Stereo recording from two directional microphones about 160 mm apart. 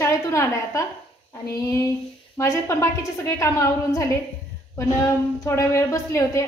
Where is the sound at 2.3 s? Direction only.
15° left (ahead or behind).